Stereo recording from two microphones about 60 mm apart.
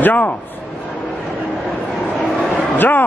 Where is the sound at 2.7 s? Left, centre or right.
Left.